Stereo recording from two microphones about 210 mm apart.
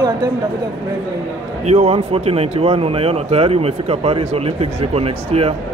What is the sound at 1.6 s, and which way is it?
Speech, 30° right (ahead or behind).